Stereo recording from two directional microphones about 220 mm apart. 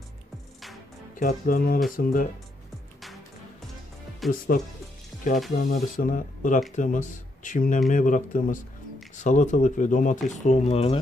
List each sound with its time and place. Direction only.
1.2 s speech: 40° left (ahead or behind)
4.2 s speech: centre (ahead or behind)
5.6 s speech: 40° left (ahead or behind)